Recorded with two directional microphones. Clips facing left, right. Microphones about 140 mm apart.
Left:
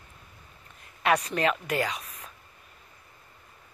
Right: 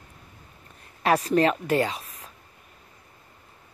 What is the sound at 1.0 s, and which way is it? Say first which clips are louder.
Speech: right 4 dB; 35° right (ahead or behind).